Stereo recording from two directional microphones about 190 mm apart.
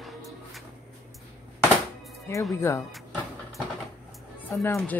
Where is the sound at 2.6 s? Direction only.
15° left (ahead or behind).